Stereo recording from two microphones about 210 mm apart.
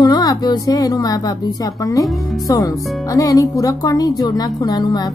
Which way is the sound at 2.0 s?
Centre (ahead or behind).